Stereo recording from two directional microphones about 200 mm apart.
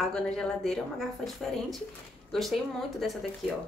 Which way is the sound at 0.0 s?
5° left (ahead or behind).